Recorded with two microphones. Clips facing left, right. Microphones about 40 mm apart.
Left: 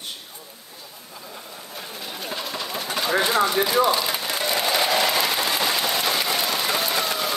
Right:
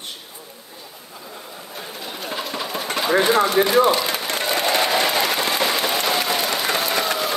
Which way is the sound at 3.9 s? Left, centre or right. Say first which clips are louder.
Right 2 dB; right.